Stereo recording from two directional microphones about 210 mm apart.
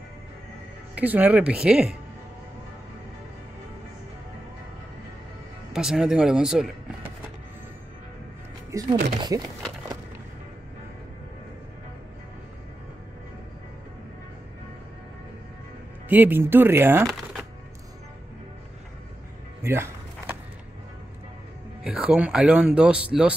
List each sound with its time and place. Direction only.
0.9 s speech: 10° right (ahead or behind)
5.7 s speech: centre (ahead or behind)
8.7 s speech: 15° right (ahead or behind)
16.1 s speech: 10° right (ahead or behind)
19.6 s music: 10° right (ahead or behind)
21.8 s speech: 5° right (ahead or behind)